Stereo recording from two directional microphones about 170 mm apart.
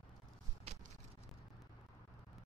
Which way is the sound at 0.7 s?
35° right (ahead or behind).